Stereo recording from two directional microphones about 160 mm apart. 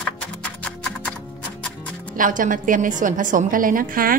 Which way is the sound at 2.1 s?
60° right (ahead or behind).